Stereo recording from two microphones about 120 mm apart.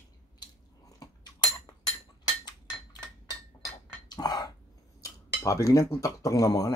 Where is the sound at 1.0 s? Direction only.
35° left (ahead or behind).